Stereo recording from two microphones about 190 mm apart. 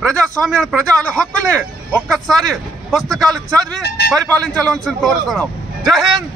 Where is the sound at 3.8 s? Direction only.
60° left (ahead or behind).